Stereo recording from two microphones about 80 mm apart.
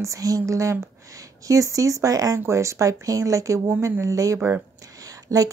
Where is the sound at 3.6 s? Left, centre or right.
Right.